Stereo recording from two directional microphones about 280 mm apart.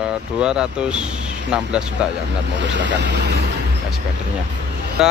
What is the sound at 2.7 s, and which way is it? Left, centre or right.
Speech, right.